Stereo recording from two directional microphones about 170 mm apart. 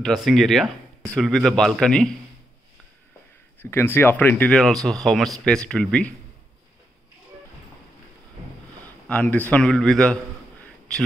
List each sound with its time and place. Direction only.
0.0 s speech: centre (ahead or behind)
3.5 s speech: 10° left (ahead or behind)
9.1 s speech: 10° left (ahead or behind)